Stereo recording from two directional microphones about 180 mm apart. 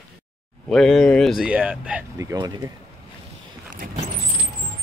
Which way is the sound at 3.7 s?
50° right (ahead or behind).